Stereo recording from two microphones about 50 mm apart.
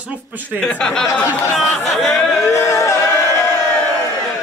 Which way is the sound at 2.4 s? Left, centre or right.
Left.